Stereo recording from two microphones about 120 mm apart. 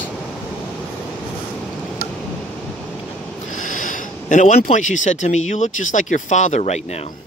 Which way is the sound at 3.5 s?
90° left.